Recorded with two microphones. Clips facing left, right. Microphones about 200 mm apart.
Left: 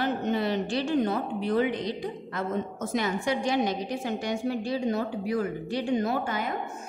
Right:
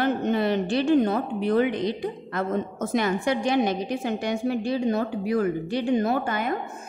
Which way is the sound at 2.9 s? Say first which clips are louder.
Right 4 dB; 60° right (ahead or behind).